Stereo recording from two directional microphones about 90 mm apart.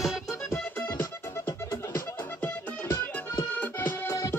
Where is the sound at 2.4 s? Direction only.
25° left (ahead or behind).